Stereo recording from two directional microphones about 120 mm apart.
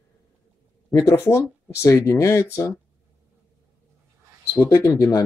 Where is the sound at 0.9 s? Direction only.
25° left (ahead or behind).